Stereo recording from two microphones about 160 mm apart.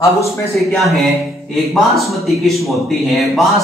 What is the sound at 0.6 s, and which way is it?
A man's voice, centre (ahead or behind).